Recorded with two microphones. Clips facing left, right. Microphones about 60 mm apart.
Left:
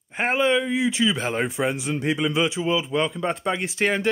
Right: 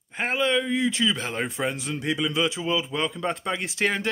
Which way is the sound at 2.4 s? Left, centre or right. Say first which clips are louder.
Left 2 dB; centre.